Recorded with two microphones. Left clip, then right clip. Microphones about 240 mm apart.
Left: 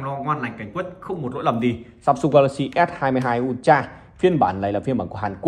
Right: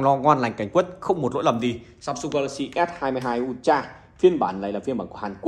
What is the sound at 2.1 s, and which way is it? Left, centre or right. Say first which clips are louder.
Speech: left 9 dB; centre.